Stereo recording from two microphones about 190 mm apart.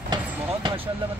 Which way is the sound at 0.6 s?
25° right (ahead or behind).